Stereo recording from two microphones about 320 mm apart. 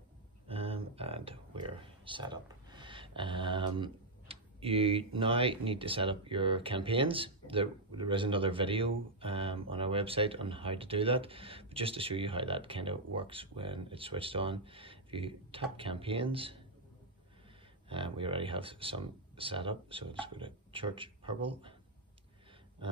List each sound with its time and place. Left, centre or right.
0.5 s speech: centre
17.8 s speech: centre